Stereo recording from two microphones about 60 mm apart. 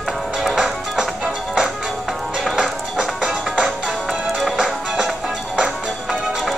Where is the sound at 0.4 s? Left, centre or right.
Centre.